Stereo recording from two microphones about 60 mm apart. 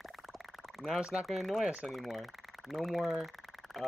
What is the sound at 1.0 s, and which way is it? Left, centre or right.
Speech, centre.